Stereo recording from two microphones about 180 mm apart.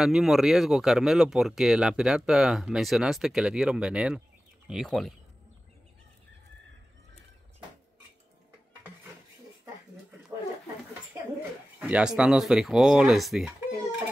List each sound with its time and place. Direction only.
0.0 s speech: centre (ahead or behind)
11.1 s a sound: 15° right (ahead or behind)
11.8 s speech: 5° right (ahead or behind)